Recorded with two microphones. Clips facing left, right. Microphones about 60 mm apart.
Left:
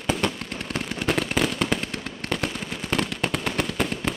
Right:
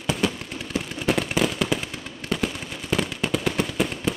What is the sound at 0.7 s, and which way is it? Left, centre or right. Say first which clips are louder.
Firecracker: right 1 dB; left.